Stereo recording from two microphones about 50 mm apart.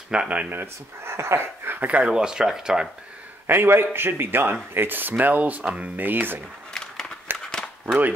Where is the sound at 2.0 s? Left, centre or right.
Centre.